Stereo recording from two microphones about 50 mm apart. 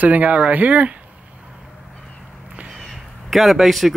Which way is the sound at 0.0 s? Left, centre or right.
Right.